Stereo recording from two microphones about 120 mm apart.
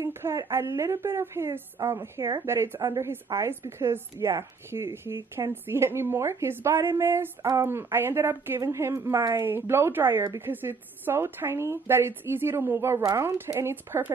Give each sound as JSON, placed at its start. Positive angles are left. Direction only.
{"t": 0.0, "sound": "a woman's voice", "side_deg": -25}